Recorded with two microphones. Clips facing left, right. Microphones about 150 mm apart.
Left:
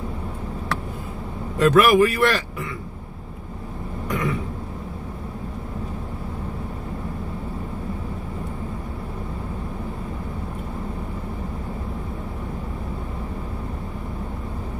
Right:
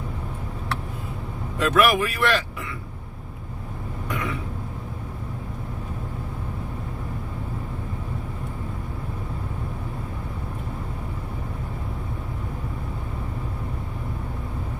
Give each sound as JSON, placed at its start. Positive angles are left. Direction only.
{"t": 1.6, "sound": "speech", "side_deg": 40}
{"t": 4.1, "sound": "throat clearing", "side_deg": 40}